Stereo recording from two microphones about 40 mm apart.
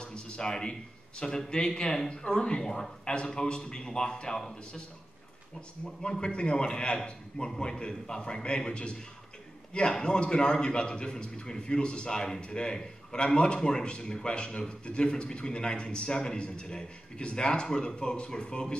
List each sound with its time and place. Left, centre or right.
0.0 s a sound: left
1.5 s a man's voice: left
6.0 s a man's voice: left